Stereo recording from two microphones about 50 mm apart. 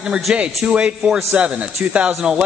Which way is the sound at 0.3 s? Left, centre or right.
Centre.